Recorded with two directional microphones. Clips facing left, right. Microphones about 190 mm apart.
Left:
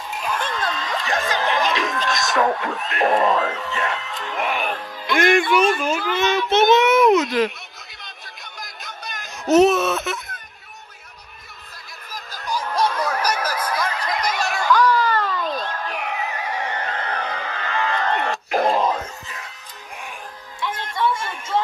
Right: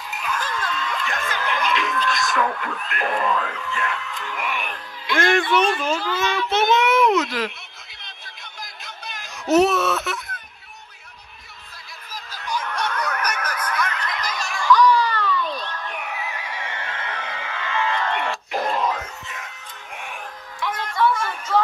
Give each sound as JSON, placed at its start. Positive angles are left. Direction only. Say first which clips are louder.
{"t": 0.2, "sound": "music", "louder": "left 2 dB", "side_deg": 30}
{"t": 5.1, "sound": "speech", "louder": "left 2 dB", "side_deg": 15}
{"t": 6.3, "sound": "child singing", "louder": "left 5 dB", "side_deg": 20}
{"t": 8.8, "sound": "music", "louder": "left 4 dB", "side_deg": 50}
{"t": 9.5, "sound": "baby cry", "louder": "left 2 dB", "side_deg": 20}
{"t": 12.3, "sound": "snicker", "louder": "left 2 dB", "side_deg": 40}
{"t": 14.3, "sound": "a sound", "louder": "left 5 dB", "side_deg": 65}
{"t": 14.6, "sound": "a sound", "louder": "right 2 dB", "side_deg": 45}
{"t": 15.8, "sound": "music", "louder": "left 4 dB", "side_deg": 90}
{"t": 16.3, "sound": "neigh", "louder": "left 5 dB", "side_deg": 40}
{"t": 18.7, "sound": "a sound", "louder": "left 4 dB", "side_deg": 35}
{"t": 20.6, "sound": "a sound", "louder": "right 2 dB", "side_deg": 25}